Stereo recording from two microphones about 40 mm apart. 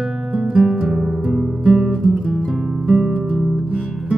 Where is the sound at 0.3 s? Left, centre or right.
Right.